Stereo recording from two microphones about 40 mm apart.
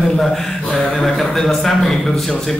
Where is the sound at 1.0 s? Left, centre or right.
Centre.